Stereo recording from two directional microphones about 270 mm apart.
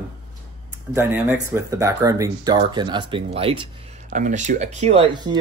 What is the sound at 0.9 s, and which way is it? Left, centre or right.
Speech, centre.